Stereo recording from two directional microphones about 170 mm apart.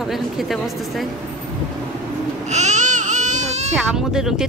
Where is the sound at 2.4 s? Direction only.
45° right (ahead or behind).